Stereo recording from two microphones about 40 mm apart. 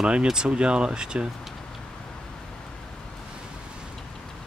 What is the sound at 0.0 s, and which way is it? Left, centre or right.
Speech, right.